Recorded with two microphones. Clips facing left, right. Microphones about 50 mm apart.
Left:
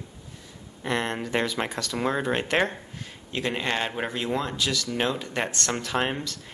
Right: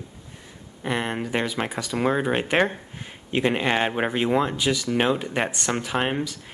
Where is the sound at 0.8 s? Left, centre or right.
Centre.